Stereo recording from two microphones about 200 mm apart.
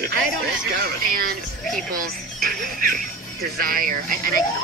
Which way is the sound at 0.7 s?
45° right (ahead or behind).